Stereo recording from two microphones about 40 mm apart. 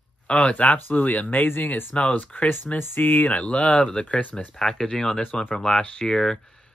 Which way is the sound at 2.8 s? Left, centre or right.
Left.